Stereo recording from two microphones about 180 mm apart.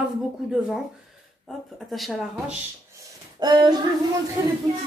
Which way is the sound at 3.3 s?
25° right (ahead or behind).